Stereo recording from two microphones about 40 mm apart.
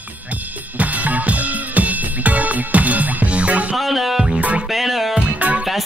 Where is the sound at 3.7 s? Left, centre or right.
Centre.